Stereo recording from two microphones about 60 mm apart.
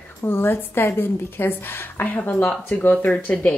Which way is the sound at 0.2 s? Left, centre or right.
Left.